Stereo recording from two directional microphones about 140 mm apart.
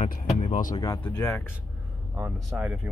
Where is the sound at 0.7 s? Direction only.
25° left (ahead or behind).